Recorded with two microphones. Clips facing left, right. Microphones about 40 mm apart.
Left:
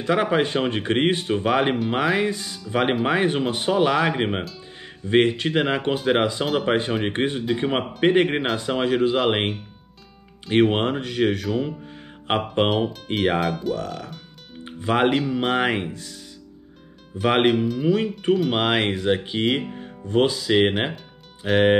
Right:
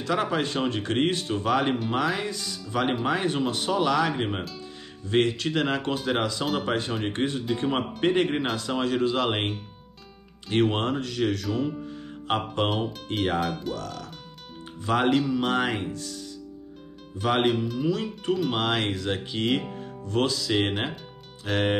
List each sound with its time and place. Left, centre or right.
0.0 s speech: left
7.4 s speech: centre
10.5 s speech: left
13.4 s speech: centre
13.7 s speech: centre
14.6 s music: left
15.1 s speech: centre
17.1 s speech: centre